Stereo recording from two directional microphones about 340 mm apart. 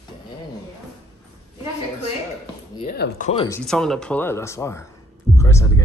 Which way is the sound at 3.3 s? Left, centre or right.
Centre.